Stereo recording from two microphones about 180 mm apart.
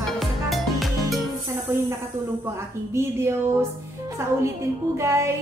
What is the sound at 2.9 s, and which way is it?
A woman's voice, 15° right (ahead or behind).